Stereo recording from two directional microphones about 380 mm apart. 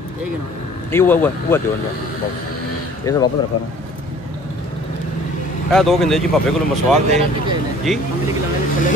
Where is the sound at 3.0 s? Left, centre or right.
Centre.